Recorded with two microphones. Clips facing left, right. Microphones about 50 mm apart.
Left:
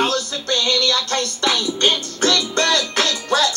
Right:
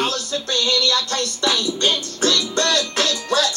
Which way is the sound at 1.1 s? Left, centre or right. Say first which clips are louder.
Left 1 dB; left.